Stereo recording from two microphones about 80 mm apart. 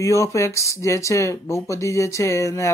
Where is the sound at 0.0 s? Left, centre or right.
Left.